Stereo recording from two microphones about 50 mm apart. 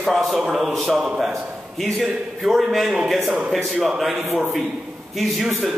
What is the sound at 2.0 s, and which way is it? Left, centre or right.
A man's voice, centre.